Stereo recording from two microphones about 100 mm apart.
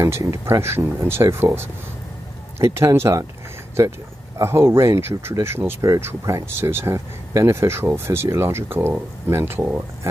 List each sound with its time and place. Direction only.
0.0 s speech: 30° right (ahead or behind)
4.4 s speech: 25° right (ahead or behind)